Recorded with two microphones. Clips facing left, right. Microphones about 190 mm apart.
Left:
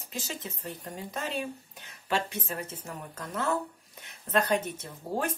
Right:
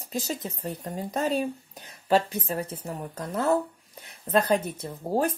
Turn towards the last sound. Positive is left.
turn(degrees=-35)  # may be behind; listen again after turning